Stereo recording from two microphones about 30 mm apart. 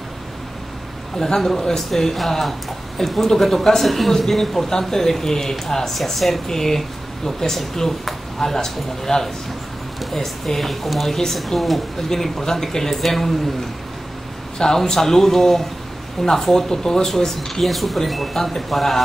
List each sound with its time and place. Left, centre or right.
1.1 s a man's voice: centre
6.0 s a man's voice: centre
11.1 s a man's voice: centre
11.3 s speech: centre
12.1 s a man's voice: centre
14.6 s a man's voice: centre
17.6 s speech: centre